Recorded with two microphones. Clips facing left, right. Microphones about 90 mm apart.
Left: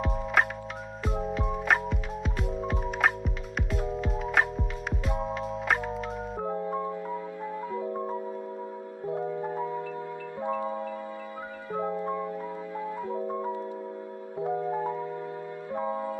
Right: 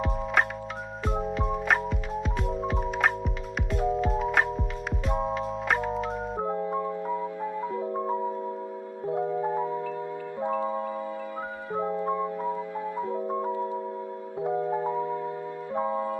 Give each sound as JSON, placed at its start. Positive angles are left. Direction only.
{"t": 0.0, "sound": "music", "side_deg": 0}
{"t": 7.7, "sound": "music", "side_deg": -30}
{"t": 10.4, "sound": "marimba", "side_deg": -20}
{"t": 11.7, "sound": "music", "side_deg": -20}